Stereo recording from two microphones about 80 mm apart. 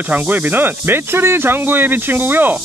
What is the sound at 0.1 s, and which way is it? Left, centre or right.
Speech, right.